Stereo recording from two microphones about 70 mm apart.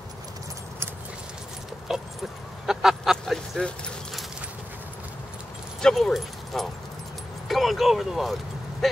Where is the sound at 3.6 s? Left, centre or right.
Centre.